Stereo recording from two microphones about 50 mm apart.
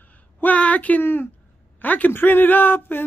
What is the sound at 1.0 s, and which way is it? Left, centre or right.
Speech, left.